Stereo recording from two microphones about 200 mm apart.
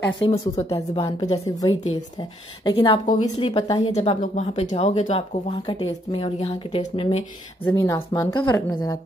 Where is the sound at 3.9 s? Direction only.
35° left (ahead or behind).